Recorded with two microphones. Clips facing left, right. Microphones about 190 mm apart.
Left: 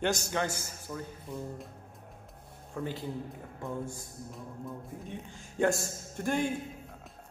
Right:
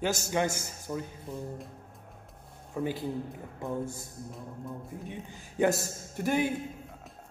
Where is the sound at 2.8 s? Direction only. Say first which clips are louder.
Right 4 dB; 10° right (ahead or behind).